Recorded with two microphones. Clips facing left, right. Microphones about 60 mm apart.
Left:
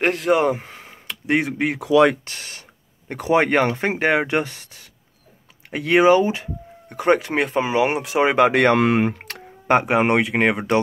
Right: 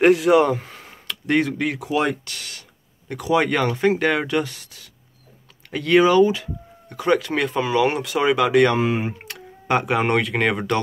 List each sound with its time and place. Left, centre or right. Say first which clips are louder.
0.0 s speech: right 4 dB; centre
0.6 s a sound: even; left
1.0 s speech: right 1 dB; centre
1.8 s speech: left 9 dB; left
2.2 s speech: even; left
8.7 s speech: left 4 dB; left
9.7 s speech: left 3 dB; left